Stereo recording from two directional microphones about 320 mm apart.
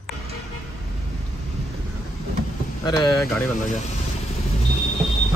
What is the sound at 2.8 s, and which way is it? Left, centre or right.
Speech, centre.